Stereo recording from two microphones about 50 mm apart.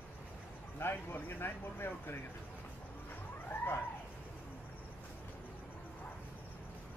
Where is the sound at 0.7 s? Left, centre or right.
Left.